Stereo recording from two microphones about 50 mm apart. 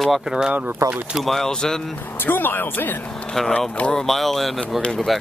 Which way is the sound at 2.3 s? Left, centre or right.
Left.